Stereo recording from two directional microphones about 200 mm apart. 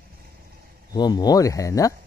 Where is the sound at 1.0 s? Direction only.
20° left (ahead or behind).